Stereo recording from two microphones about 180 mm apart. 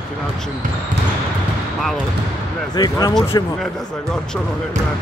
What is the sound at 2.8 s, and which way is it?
Speech, 20° left (ahead or behind).